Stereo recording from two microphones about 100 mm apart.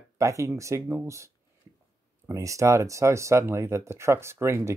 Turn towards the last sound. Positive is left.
turn(degrees=-25)  # may be behind; listen again after turning